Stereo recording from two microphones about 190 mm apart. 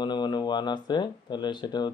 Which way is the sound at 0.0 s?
25° left (ahead or behind).